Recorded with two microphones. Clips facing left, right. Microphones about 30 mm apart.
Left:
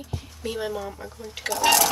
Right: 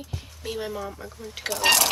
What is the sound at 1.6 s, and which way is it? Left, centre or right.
Speech, right.